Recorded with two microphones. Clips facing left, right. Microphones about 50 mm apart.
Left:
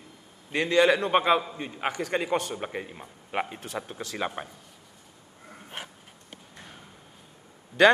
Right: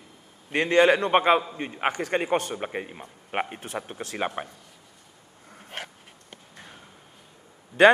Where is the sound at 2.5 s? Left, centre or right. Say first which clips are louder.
Right 2 dB; right.